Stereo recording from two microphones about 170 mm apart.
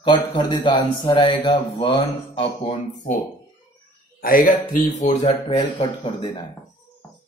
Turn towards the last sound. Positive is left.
turn(degrees=25)  # may be behind; listen again after turning